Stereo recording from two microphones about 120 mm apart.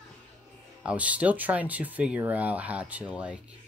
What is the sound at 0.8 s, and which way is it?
Speech, 10° right (ahead or behind).